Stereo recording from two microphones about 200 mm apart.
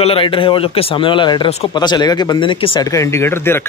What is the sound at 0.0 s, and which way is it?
Speech, 25° left (ahead or behind).